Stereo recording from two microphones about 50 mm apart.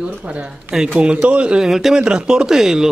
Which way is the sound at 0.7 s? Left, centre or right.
Centre.